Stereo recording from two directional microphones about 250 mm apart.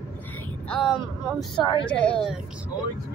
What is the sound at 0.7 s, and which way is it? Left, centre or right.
Speech, centre.